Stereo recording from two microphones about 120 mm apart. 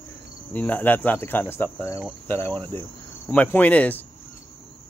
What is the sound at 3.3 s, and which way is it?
Speech, 15° left (ahead or behind).